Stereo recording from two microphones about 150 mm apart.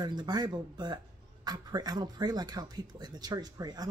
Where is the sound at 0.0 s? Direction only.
30° right (ahead or behind).